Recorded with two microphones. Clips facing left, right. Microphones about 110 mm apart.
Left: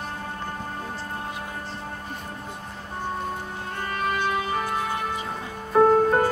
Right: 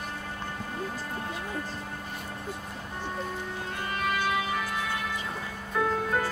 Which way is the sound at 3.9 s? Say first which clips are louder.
Left 3 dB; 40° left (ahead or behind).